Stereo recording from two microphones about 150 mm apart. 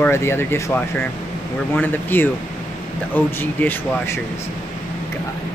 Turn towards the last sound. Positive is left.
turn(degrees=15)  # may be behind; listen again after turning